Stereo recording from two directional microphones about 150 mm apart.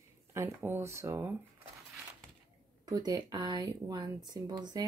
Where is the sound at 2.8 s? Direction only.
25° right (ahead or behind).